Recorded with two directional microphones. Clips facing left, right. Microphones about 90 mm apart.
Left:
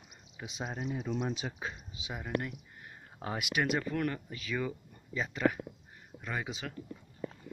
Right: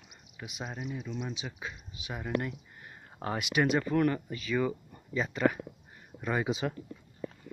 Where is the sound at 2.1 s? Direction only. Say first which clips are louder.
Right 3 dB; centre (ahead or behind).